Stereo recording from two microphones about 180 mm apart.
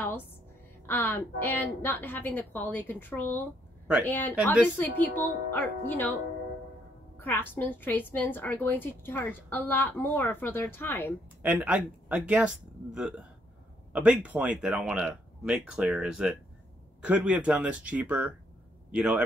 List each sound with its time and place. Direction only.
0.8 s a woman's voice: 10° left (ahead or behind)
7.2 s a woman's voice: 10° left (ahead or behind)
11.4 s speech: 10° right (ahead or behind)